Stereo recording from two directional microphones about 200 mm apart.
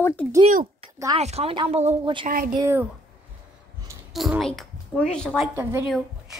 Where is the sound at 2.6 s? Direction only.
10° right (ahead or behind).